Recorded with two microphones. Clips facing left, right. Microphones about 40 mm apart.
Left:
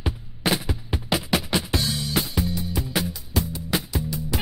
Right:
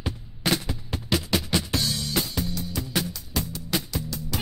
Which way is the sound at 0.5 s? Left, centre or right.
Centre.